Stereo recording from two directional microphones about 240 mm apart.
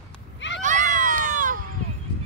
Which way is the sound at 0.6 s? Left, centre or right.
Right.